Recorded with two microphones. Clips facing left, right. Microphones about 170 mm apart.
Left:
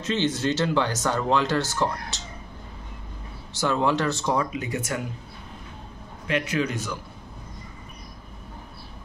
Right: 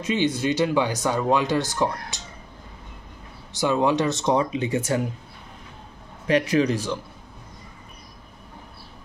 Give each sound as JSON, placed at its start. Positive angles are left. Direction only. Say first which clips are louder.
{"t": 0.0, "sound": "speech", "louder": "right 2 dB", "side_deg": -10}
{"t": 3.5, "sound": "speech", "louder": "right 2 dB", "side_deg": -15}
{"t": 6.2, "sound": "a man's voice", "louder": "right 6 dB", "side_deg": -35}